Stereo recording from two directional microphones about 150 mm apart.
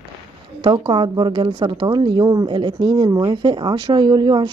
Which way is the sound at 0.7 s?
30° right (ahead or behind).